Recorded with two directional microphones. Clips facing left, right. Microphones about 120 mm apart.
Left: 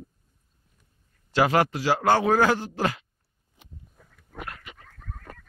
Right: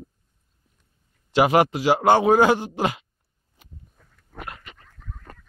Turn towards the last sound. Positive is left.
turn(degrees=15)  # may be behind; listen again after turning